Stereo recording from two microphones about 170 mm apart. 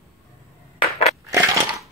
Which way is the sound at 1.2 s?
20° right (ahead or behind).